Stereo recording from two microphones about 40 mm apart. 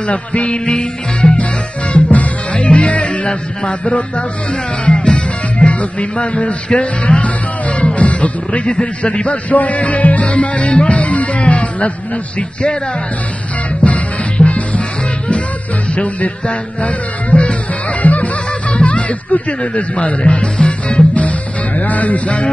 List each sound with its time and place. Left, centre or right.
0.0 s a man's voice: left
0.7 s music: left
3.6 s a man's voice: left
4.8 s music: left
9.0 s a man's voice: left
10.7 s music: left
13.7 s music: left
15.9 s a man's voice: left
18.0 s music: left